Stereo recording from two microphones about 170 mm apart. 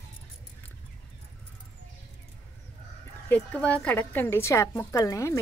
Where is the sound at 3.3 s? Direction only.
5° left (ahead or behind).